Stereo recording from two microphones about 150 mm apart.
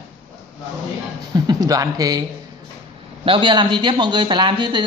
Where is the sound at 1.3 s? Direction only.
25° right (ahead or behind).